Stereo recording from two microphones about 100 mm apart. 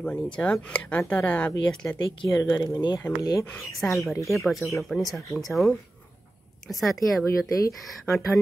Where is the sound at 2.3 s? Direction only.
35° left (ahead or behind).